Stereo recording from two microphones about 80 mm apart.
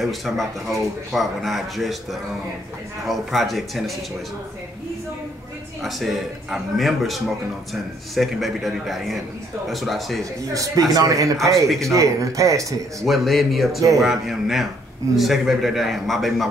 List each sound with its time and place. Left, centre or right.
0.0 s speech: centre
3.1 s speech: centre
5.8 s speech: centre
10.5 s a man's voice: right
13.0 s speech: centre
13.7 s a man's voice: right
14.0 s speech: centre